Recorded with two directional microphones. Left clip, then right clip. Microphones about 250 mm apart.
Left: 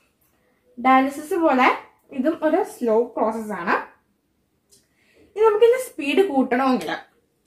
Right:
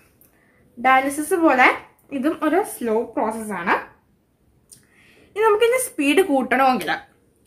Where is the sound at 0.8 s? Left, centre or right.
Right.